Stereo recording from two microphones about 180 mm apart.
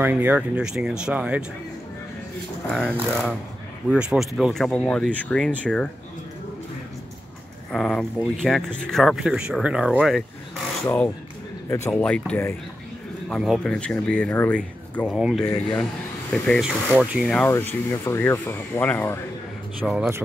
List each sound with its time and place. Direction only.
0.0 s speech: 10° right (ahead or behind)
2.7 s speech: centre (ahead or behind)
7.7 s speech: 5° left (ahead or behind)
11.7 s speech: 10° left (ahead or behind)
13.3 s speech: centre (ahead or behind)
15.1 s speech: 5° right (ahead or behind)
15.4 s speech: 20° left (ahead or behind)
16.3 s speech: 5° left (ahead or behind)
17.5 s speech: 10° left (ahead or behind)
19.8 s speech: centre (ahead or behind)